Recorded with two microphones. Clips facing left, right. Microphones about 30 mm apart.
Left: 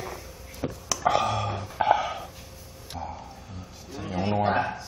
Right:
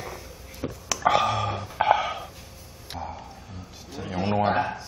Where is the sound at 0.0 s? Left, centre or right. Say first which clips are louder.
Even; centre.